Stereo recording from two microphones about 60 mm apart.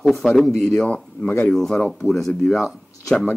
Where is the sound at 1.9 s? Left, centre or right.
Centre.